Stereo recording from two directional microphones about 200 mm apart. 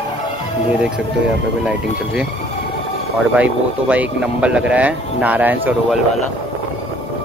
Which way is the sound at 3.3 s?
5° right (ahead or behind).